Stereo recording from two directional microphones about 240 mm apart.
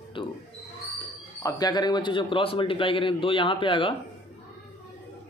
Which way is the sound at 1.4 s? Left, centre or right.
Centre.